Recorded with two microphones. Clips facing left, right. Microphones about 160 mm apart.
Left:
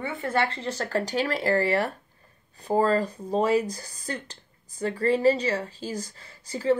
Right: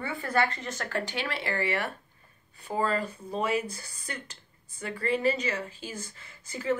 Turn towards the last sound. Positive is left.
turn(degrees=35)  # may be behind; listen again after turning